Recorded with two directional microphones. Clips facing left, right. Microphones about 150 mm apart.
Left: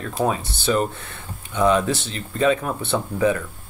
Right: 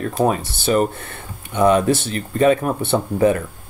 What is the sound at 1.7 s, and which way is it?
Speech, 50° right (ahead or behind).